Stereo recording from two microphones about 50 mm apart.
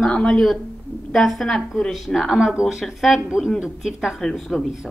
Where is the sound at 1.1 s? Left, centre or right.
Centre.